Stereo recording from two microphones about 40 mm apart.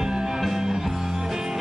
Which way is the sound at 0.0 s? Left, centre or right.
Centre.